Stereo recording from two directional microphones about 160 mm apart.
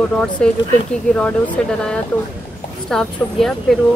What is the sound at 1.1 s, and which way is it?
A woman's voice, 5° left (ahead or behind).